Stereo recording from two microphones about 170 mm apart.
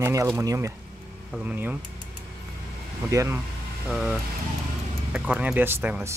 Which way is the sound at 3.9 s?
Centre (ahead or behind).